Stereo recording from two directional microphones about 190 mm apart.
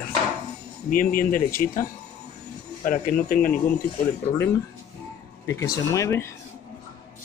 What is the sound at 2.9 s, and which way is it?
Speech, 45° left (ahead or behind).